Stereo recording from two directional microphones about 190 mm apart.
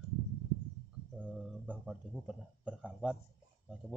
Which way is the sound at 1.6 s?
5° right (ahead or behind).